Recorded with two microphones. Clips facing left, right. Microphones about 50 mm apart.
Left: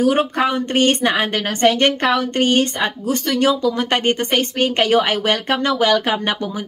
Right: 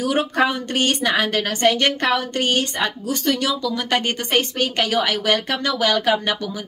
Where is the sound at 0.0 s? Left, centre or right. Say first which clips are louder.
Left 3 dB; left.